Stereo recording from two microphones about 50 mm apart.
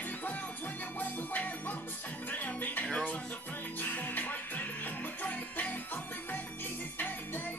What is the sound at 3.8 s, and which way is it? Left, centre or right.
Music, left.